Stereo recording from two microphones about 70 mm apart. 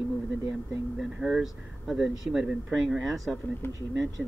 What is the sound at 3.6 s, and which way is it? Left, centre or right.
Speech, left.